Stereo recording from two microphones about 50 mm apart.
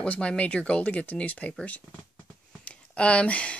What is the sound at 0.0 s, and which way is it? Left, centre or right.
Speech, left.